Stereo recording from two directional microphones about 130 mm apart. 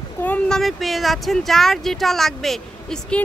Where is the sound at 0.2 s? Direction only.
10° left (ahead or behind).